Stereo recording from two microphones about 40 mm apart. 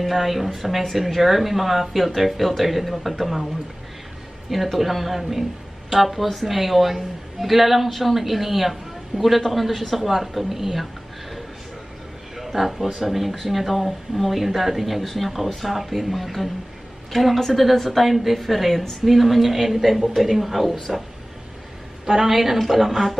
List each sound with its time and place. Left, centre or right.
0.0 s a woman's voice: centre
4.5 s a woman's voice: centre
12.4 s a sound: centre
13.0 s a woman's voice: centre
22.0 s a woman's voice: centre